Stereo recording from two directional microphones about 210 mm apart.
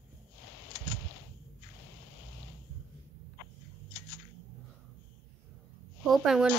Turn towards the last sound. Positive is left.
turn(degrees=0)  # may be behind; listen again after turning